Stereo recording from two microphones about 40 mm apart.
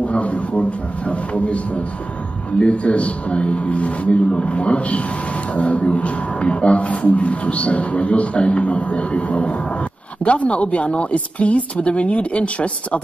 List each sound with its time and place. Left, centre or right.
0.0 s a man's voice: left
2.6 s a man's voice: left